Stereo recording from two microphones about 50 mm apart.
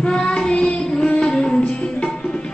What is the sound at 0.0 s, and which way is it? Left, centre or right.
Child singing, centre.